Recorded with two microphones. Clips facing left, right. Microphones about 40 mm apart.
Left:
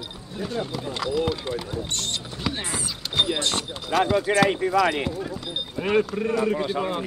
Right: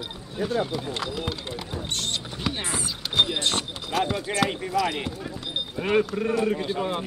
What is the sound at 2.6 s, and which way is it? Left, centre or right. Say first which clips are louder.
Speech: even; right.